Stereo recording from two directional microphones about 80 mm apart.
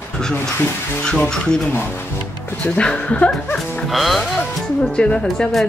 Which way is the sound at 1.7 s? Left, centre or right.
Left.